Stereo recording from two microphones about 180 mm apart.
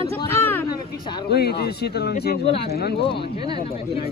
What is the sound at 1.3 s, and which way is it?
Speech, 65° left (ahead or behind).